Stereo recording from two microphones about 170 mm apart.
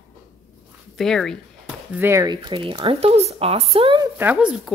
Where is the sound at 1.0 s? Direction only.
5° left (ahead or behind).